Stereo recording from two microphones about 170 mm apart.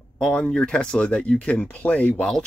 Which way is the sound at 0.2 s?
5° left (ahead or behind).